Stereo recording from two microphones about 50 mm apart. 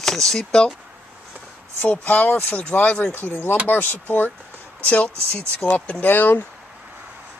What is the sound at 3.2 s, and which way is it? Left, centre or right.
Speech, left.